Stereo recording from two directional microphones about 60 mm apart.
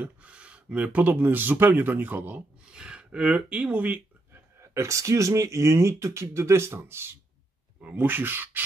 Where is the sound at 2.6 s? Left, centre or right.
Centre.